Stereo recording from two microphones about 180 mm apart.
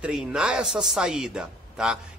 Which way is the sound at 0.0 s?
5° right (ahead or behind).